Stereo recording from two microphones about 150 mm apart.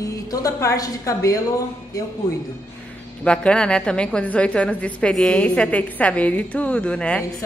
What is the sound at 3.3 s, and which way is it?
A woman's voice, 5° left (ahead or behind).